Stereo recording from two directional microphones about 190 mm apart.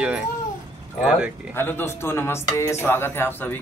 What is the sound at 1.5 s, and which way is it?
Speech, 10° left (ahead or behind).